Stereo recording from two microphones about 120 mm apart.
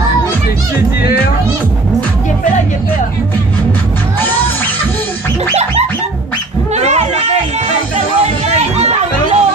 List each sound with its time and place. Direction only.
6.7 s children playing: 70° right (ahead or behind)
8.7 s music: 65° right (ahead or behind)